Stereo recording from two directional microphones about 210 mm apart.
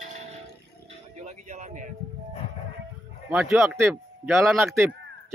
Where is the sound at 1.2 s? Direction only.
35° right (ahead or behind).